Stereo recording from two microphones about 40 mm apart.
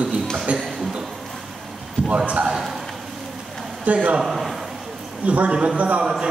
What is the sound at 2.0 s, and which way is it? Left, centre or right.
Speech, right.